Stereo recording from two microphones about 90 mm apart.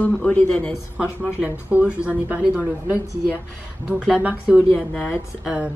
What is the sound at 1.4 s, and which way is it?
A woman's voice, 15° right (ahead or behind).